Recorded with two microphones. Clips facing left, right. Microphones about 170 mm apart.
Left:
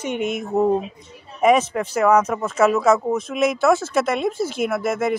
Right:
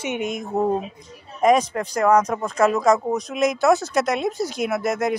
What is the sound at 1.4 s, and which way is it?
Speech, 5° left (ahead or behind).